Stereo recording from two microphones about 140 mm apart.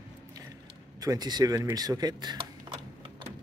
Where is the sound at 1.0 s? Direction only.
25° right (ahead or behind).